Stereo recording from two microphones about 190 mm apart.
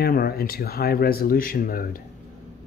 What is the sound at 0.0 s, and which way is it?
Speech, 55° left (ahead or behind).